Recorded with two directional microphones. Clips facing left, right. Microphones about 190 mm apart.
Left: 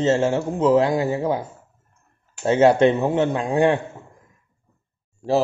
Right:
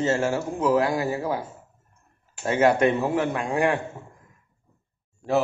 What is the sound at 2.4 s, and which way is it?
A man's voice, 30° left (ahead or behind).